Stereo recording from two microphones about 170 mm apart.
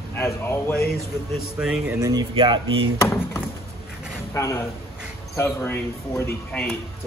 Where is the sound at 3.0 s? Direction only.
15° left (ahead or behind).